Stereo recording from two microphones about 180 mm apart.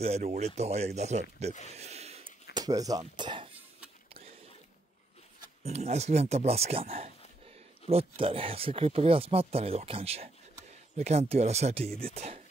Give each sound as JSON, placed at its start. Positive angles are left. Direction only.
{"t": 0.0, "sound": "speech", "side_deg": -35}
{"t": 1.7, "sound": "a sound", "side_deg": -35}
{"t": 2.5, "sound": "speech", "side_deg": -20}
{"t": 5.6, "sound": "speech", "side_deg": -35}